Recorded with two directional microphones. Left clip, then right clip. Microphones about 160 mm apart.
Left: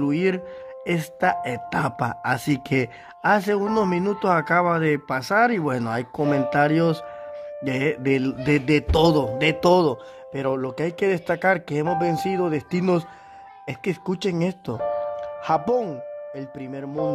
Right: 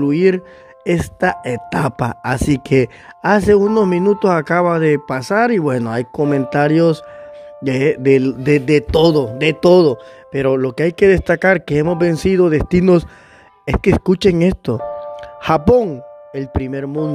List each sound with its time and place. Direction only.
0.0 s speech: 30° right (ahead or behind); by 17.1 s 50° right (ahead or behind)